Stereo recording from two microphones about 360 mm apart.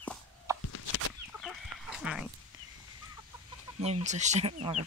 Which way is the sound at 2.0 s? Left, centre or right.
Centre.